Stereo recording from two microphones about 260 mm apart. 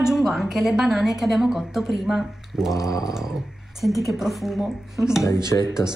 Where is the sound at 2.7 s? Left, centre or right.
Centre.